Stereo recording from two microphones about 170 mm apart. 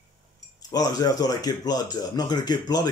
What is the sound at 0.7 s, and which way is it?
Speech, 20° left (ahead or behind).